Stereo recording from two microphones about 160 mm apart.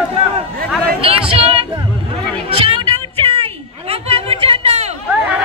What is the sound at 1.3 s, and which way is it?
Music, 40° right (ahead or behind).